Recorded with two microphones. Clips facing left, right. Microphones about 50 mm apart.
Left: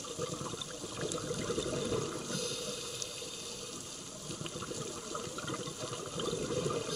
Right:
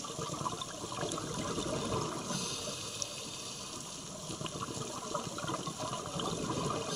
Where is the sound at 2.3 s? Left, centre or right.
Centre.